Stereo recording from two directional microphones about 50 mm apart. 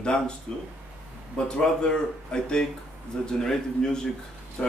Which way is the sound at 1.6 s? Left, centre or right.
Centre.